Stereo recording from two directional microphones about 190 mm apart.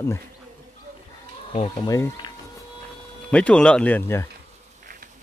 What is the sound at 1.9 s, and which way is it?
Speech, 20° left (ahead or behind).